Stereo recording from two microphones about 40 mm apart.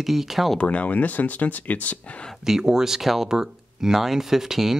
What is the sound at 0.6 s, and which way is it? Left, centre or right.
Speech, left.